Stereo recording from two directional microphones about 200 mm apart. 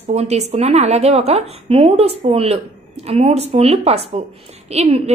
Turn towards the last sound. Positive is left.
turn(degrees=-30)  # may be behind; listen again after turning